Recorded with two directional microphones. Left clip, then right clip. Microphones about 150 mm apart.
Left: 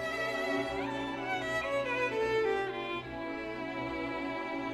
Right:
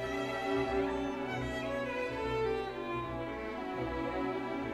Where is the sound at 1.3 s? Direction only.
35° left (ahead or behind).